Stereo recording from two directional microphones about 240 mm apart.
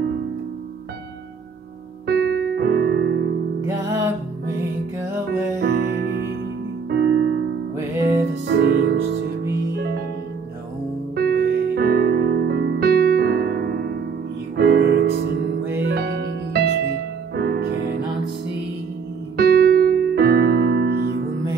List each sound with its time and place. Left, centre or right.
2.0 s music: right
3.6 s music: centre
5.6 s music: right
8.5 s music: right
11.1 s music: right
19.3 s piano: right